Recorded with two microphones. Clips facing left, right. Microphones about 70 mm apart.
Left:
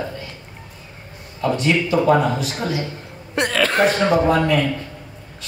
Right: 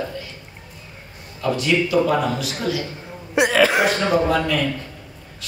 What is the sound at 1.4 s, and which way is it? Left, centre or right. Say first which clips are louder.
Speech: left 1 dB; left.